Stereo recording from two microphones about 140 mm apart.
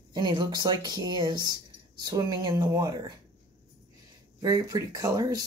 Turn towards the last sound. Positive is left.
turn(degrees=-30)  # may be behind; listen again after turning